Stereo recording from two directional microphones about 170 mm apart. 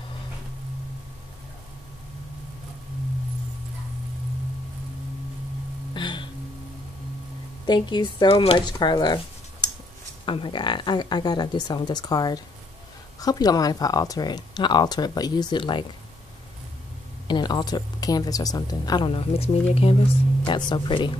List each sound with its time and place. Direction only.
5.9 s music: 30° left (ahead or behind)
7.6 s speech: 25° left (ahead or behind)
10.2 s speech: 30° left (ahead or behind)
17.3 s speech: 25° left (ahead or behind)